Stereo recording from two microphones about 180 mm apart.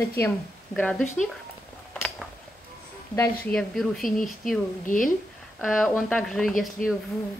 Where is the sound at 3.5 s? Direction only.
Centre (ahead or behind).